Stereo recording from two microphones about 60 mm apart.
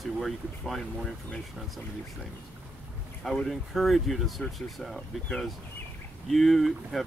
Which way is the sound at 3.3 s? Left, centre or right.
Centre.